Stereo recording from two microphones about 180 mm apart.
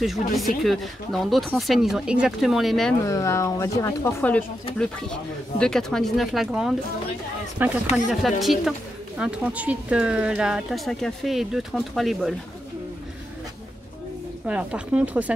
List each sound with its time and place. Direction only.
0.0 s speech: centre (ahead or behind)
3.0 s speech: 15° left (ahead or behind); by 12.4 s centre (ahead or behind)
14.5 s speech: 5° right (ahead or behind)